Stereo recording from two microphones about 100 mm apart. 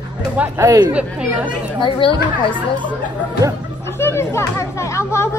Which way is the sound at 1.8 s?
60° left (ahead or behind).